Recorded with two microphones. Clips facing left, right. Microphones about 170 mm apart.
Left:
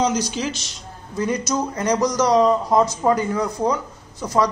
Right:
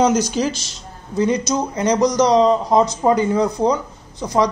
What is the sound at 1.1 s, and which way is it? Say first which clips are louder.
Speech: right 4 dB; 20° right (ahead or behind).